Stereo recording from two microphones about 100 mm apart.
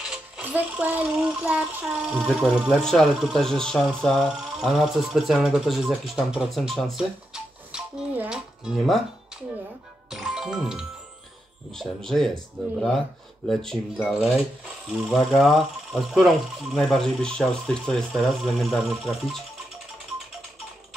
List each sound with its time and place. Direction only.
0.0 s speech: 10° right (ahead or behind)
10.0 s music: 5° right (ahead or behind)
11.7 s speech: 5° left (ahead or behind)
13.5 s speech: 5° left (ahead or behind)
14.9 s speech: 5° right (ahead or behind)